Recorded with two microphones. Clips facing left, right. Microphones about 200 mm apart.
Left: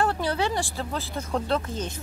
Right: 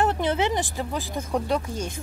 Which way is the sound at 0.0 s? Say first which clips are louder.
Right 2 dB; 20° right (ahead or behind).